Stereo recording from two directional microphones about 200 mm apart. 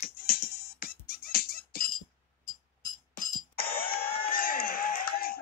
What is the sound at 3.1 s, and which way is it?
Music, 50° left (ahead or behind).